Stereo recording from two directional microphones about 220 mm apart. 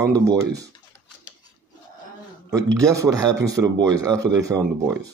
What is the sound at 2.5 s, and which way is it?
Speech, 15° right (ahead or behind).